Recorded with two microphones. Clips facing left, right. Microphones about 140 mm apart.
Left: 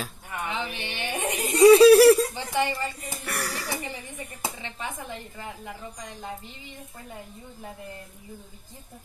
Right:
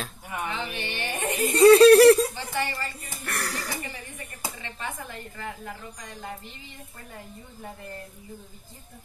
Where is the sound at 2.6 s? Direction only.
20° left (ahead or behind).